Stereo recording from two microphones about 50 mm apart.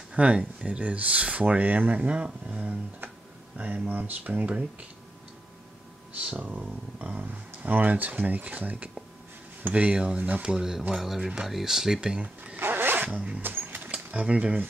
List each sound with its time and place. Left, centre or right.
0.1 s speech: right
6.1 s speech: right
9.8 s speech: centre
12.5 s zipper: right
13.1 s speech: centre
13.4 s a sound: right
14.2 s speech: right